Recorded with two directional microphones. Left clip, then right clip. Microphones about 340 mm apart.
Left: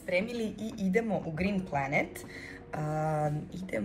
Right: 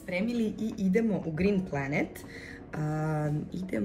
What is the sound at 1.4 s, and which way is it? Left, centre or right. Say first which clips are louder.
Speech: right 2 dB; left.